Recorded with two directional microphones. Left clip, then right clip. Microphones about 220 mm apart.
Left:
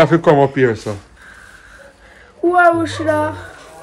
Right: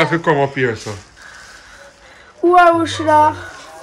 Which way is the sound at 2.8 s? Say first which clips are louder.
Right 5 dB; 45° right (ahead or behind).